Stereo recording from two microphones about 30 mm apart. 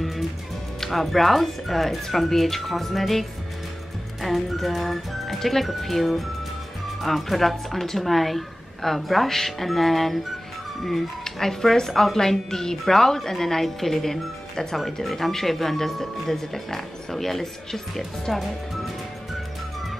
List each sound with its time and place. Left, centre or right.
0.8 s speech: centre